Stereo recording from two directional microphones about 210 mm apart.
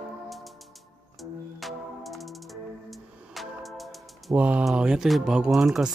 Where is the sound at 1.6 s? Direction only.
Centre (ahead or behind).